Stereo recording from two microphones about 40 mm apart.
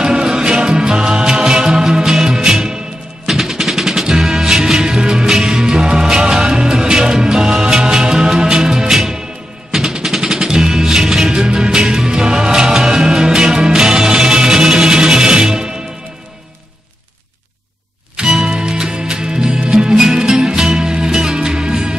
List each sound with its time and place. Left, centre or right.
0.0 s music: centre
18.4 s music: centre